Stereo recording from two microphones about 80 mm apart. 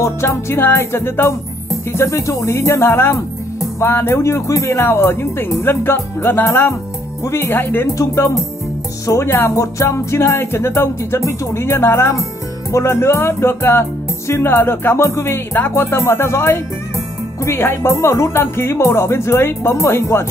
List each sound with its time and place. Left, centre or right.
0.0 s music: left
8.0 s music: left